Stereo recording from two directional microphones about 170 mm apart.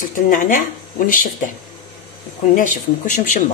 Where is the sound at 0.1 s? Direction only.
50° left (ahead or behind).